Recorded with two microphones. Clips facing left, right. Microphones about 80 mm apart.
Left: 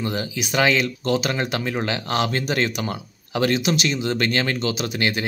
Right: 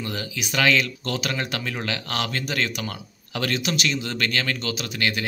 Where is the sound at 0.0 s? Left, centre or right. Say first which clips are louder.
Left 5 dB; centre.